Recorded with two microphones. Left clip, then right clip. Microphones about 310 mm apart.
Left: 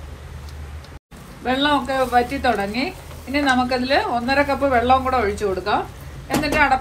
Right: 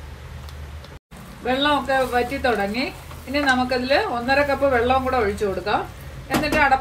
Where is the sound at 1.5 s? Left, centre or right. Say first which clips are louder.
Even; centre.